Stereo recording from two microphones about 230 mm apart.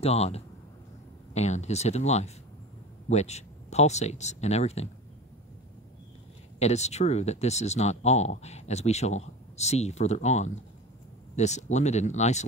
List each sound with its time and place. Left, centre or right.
0.0 s speech: left
6.6 s speech: left